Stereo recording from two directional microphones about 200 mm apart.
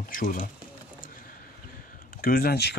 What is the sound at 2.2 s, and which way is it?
Speech, 50° left (ahead or behind).